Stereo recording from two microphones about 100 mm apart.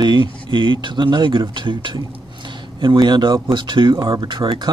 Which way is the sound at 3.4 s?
55° right (ahead or behind).